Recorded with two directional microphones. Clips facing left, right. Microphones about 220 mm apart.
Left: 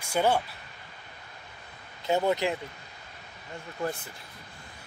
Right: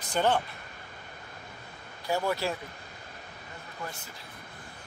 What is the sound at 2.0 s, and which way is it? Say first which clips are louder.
Speech: left 4 dB; 20° left (ahead or behind).